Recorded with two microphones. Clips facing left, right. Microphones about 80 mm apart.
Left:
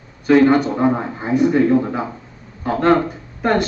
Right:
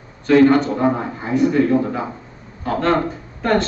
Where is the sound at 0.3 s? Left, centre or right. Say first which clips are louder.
Even; centre.